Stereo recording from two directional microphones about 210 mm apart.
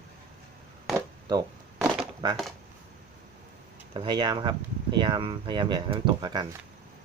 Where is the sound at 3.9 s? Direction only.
20° right (ahead or behind).